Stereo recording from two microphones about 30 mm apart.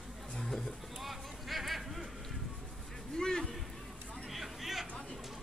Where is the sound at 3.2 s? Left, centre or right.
Left.